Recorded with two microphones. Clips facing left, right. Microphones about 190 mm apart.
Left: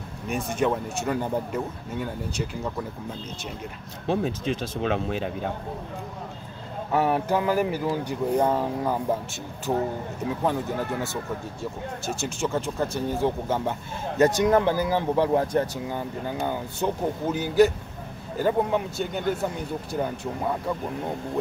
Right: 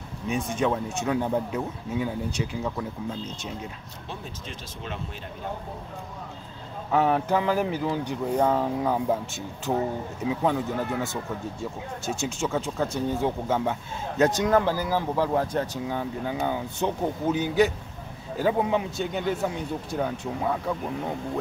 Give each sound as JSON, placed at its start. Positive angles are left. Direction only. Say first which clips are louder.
{"t": 0.3, "sound": "speech", "louder": "left 1 dB", "side_deg": 5}
{"t": 4.1, "sound": "speech", "louder": "left 14 dB", "side_deg": 70}
{"t": 6.9, "sound": "speech", "louder": "even", "side_deg": 5}
{"t": 12.1, "sound": "speech", "louder": "even", "side_deg": 0}